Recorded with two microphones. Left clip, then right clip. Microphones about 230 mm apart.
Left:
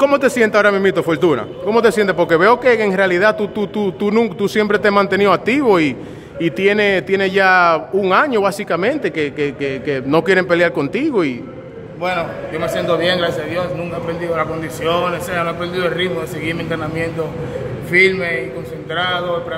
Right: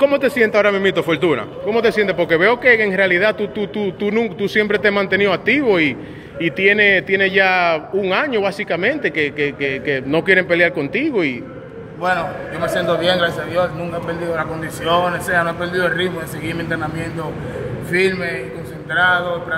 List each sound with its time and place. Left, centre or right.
0.0 s a man's voice: centre
12.0 s a man's voice: centre
14.9 s a man's voice: centre
17.9 s a man's voice: centre